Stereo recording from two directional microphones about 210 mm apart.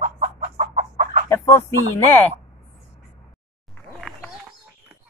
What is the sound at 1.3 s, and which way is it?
Chicken, 15° left (ahead or behind).